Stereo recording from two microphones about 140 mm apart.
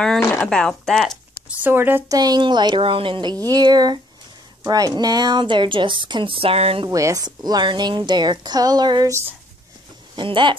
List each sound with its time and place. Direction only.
0.4 s speech: 5° left (ahead or behind)
1.5 s speech: 15° right (ahead or behind)
2.1 s a woman's voice: 30° right (ahead or behind); by 6.9 s 45° right (ahead or behind)
6.9 s a woman's voice: 25° right (ahead or behind)
10.1 s a woman's voice: 35° right (ahead or behind)